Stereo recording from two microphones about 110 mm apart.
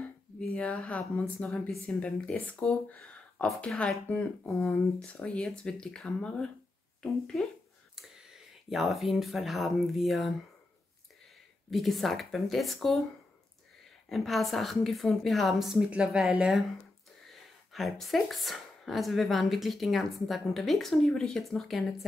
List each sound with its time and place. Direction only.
0.0 s speech: 10° left (ahead or behind)
4.5 s speech: 25° left (ahead or behind)
5.0 s speech: 10° left (ahead or behind)
7.9 s speech: 5° right (ahead or behind)
11.7 s a woman's voice: centre (ahead or behind)
14.0 s a woman's voice: centre (ahead or behind)